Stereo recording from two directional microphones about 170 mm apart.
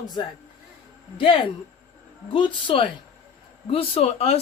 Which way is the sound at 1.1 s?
30° left (ahead or behind).